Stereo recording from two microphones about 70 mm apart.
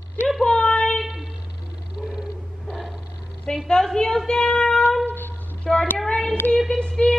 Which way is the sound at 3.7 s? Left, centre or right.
Centre.